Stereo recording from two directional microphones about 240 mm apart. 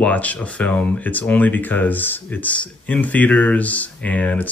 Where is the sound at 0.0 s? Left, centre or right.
Centre.